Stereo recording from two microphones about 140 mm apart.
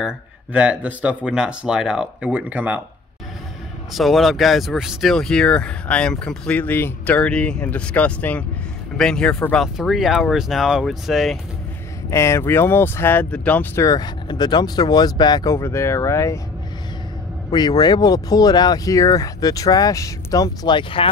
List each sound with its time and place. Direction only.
0.0 s speech: 10° right (ahead or behind)
3.9 s speech: centre (ahead or behind)
12.1 s speech: 20° left (ahead or behind)
13.8 s speech: 30° left (ahead or behind)
17.5 s speech: 30° left (ahead or behind)